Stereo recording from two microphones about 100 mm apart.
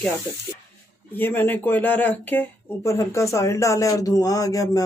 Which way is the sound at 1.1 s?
20° left (ahead or behind).